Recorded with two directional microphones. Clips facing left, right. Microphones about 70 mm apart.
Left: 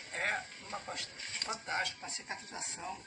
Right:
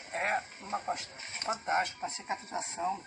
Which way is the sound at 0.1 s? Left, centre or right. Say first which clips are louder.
Right 4 dB; right.